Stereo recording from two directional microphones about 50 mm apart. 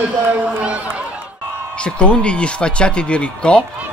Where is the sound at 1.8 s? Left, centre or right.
Left.